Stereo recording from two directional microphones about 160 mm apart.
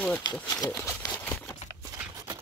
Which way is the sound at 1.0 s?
10° left (ahead or behind).